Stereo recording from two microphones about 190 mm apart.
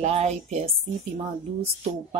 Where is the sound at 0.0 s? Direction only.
35° right (ahead or behind).